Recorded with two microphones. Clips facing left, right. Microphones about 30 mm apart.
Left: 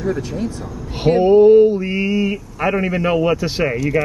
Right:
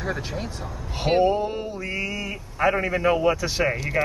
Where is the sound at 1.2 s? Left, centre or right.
Centre.